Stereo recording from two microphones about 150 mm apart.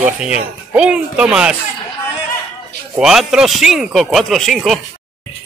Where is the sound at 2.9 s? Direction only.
5° right (ahead or behind).